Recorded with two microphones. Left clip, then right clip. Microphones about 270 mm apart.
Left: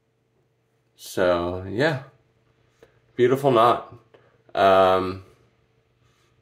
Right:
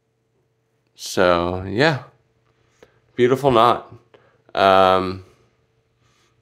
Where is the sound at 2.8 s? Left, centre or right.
Right.